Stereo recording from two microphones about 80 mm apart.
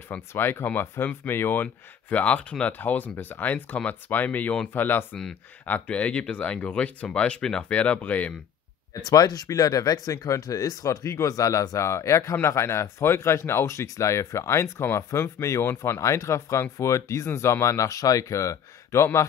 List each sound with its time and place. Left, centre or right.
0.3 s speech: left
9.0 s speech: left